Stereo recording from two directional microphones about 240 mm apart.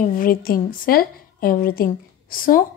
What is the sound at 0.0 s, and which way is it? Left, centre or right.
A woman's voice, left.